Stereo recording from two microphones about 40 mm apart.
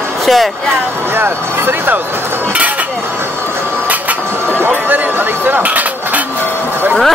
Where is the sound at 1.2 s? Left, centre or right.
Right.